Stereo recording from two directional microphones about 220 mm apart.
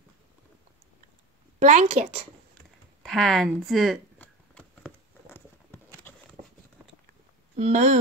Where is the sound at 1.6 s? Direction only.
35° right (ahead or behind).